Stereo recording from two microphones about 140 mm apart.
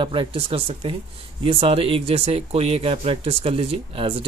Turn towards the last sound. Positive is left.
turn(degrees=-40)  # may be behind; listen again after turning